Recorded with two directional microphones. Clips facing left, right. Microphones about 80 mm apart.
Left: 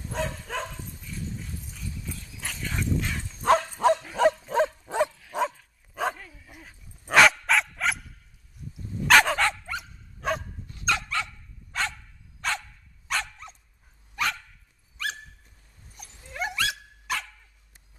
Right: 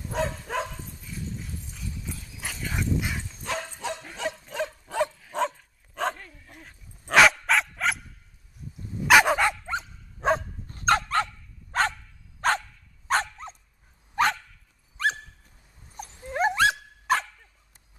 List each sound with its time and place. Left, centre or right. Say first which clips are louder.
0.1 s dog: right 3 dB; centre
1.7 s dog: even; centre
3.4 s bow-wow: left 12 dB; left
4.8 s dog: left 1 dB; left
5.1 s dog: even; centre
9.0 s dog: right 1 dB; centre
9.7 s dog: right 4 dB; right